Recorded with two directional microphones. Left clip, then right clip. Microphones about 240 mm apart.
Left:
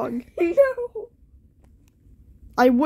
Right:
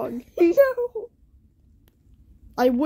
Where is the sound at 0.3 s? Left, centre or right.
Right.